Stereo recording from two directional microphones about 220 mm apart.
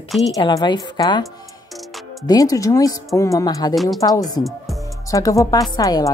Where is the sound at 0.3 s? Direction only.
20° left (ahead or behind).